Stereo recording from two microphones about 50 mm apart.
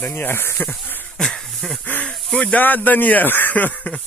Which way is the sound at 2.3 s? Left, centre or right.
Left.